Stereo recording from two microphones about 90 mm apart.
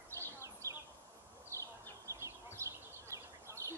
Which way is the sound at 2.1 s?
35° right (ahead or behind).